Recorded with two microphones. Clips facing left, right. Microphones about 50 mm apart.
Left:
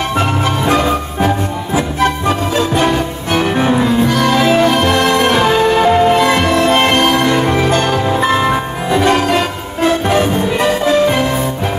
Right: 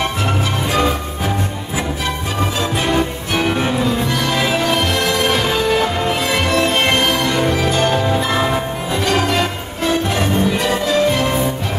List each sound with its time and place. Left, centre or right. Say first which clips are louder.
6.8 s music: left 4 dB; centre
7.2 s music: left 4 dB; left
9.0 s music: left 4 dB; centre
9.8 s music: left 5 dB; left